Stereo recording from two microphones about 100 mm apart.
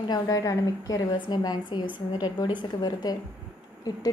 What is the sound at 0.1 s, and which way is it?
A woman's voice, 35° left (ahead or behind).